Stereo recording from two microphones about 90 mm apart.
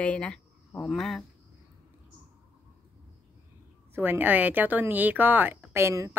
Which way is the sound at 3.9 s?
20° right (ahead or behind).